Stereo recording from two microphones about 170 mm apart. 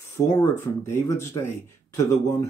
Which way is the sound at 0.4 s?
15° left (ahead or behind).